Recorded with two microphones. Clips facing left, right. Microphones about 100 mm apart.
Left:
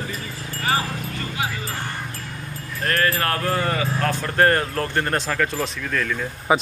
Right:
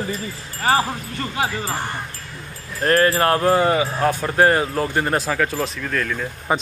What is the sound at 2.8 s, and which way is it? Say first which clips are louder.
Speech: right 6 dB; 30° right (ahead or behind).